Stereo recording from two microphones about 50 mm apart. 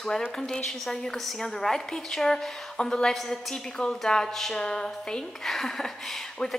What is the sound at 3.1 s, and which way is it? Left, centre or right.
A woman's voice, centre.